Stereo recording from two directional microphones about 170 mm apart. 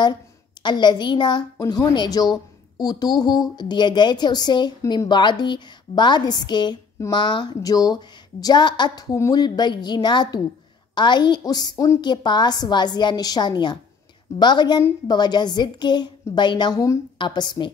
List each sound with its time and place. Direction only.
0.0 s a woman's voice: 25° left (ahead or behind)